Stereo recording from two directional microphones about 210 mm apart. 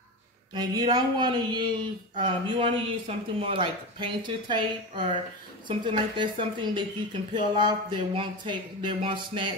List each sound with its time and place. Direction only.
0.6 s speech: 20° right (ahead or behind)